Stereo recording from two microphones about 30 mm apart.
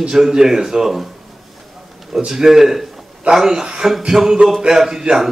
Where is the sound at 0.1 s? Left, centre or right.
Right.